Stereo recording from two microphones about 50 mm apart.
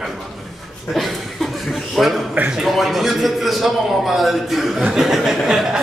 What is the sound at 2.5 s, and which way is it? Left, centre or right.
A man's voice, centre.